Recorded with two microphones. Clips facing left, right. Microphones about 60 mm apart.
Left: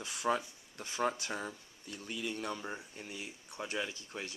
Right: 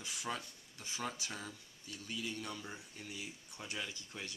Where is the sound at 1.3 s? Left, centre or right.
Left.